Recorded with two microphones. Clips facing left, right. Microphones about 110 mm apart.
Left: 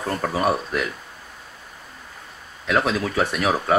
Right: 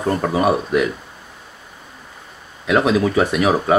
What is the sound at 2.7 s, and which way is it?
Speech, 5° right (ahead or behind).